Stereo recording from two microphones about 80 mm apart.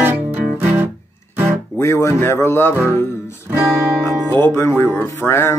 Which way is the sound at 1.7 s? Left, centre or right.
Left.